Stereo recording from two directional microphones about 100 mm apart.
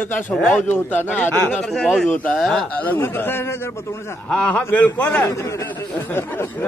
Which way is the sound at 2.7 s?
15° left (ahead or behind).